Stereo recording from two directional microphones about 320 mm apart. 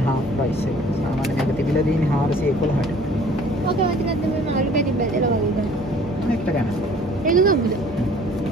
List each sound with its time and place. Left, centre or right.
7.2 s speech: right